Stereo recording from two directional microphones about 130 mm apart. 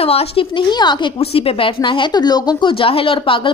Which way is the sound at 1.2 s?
50° left (ahead or behind).